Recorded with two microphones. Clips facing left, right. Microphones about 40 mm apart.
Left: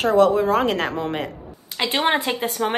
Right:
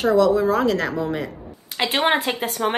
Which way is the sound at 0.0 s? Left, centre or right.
Left.